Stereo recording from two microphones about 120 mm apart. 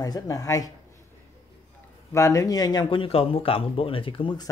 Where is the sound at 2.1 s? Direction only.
25° left (ahead or behind).